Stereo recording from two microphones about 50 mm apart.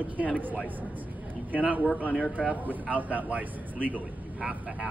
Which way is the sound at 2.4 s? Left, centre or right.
Right.